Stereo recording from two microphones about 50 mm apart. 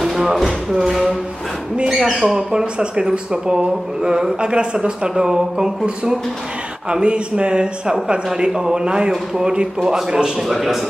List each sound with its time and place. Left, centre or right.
0.0 s speech: centre